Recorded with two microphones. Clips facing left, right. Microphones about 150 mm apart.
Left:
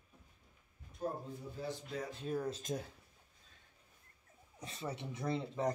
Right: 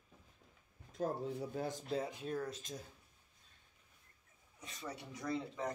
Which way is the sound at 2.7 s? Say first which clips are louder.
Left 8 dB; 50° left (ahead or behind).